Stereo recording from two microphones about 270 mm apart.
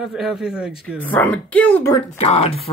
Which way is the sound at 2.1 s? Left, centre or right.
Left.